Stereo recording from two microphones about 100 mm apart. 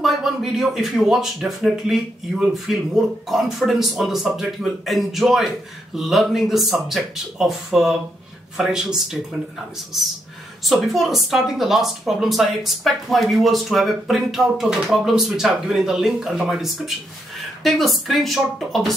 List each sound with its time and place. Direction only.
0.0 s speech: centre (ahead or behind)
10.6 s speech: centre (ahead or behind)